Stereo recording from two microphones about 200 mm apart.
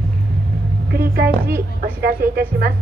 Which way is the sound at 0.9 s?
50° right (ahead or behind).